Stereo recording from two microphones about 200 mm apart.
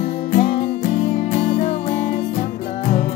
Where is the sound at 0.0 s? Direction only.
40° left (ahead or behind).